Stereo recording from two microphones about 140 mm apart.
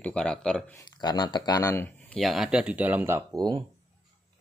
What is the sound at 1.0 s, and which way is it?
Speech, 30° left (ahead or behind).